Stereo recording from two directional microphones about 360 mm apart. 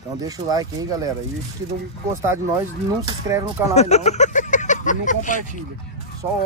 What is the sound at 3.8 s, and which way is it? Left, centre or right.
Speech, centre.